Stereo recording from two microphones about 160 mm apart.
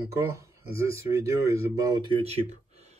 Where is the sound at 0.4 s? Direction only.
20° right (ahead or behind).